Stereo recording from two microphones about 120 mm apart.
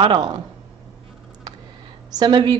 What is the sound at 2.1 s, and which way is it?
Speech, 35° right (ahead or behind).